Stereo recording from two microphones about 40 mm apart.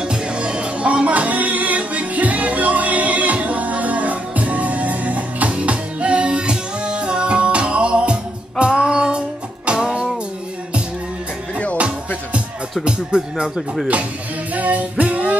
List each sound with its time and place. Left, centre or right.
0.0 s music: right
12.8 s speech: centre
14.5 s music: right